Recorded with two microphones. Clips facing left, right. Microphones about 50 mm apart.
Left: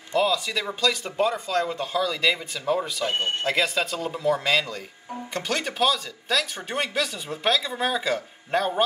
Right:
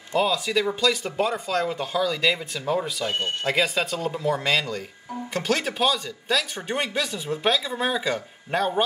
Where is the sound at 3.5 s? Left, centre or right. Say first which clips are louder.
Right 2 dB; centre.